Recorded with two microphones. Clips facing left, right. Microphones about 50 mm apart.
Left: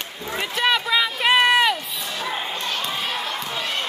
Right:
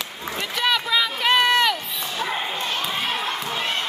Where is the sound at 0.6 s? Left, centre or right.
Centre.